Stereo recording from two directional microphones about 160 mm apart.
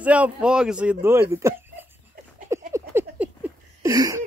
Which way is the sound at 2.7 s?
15° right (ahead or behind).